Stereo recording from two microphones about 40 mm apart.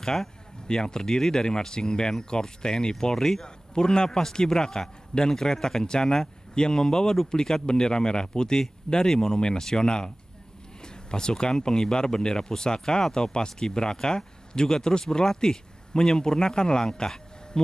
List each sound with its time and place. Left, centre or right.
0.0 s speech: centre